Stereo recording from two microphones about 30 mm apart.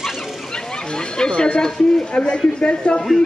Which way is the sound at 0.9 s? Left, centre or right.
Left.